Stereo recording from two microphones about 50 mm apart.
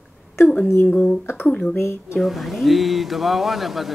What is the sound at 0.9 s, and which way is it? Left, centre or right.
Speech, left.